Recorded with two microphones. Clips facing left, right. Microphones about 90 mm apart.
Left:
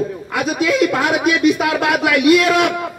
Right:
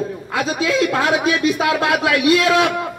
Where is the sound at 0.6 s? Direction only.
35° right (ahead or behind).